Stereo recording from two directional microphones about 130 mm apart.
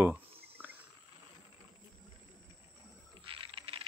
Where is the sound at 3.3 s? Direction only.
45° right (ahead or behind).